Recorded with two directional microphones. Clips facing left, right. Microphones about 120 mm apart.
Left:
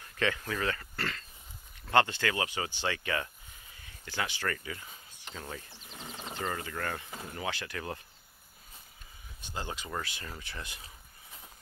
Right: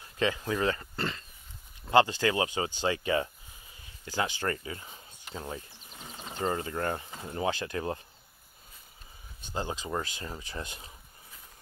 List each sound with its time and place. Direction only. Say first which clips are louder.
0.0 s speech: right 3 dB; 25° right (ahead or behind)
5.9 s a sound: left 1 dB; 5° right (ahead or behind)
6.3 s speech: right 5 dB; 30° right (ahead or behind)
9.5 s speech: right 5 dB; 30° right (ahead or behind)